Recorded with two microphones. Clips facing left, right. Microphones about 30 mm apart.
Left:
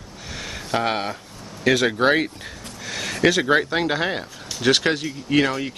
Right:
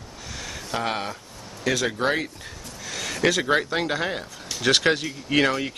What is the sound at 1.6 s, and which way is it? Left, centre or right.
Speech, left.